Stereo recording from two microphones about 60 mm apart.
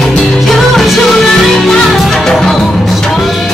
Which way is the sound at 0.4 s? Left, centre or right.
Centre.